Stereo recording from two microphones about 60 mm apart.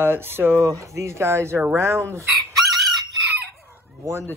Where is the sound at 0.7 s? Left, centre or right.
Right.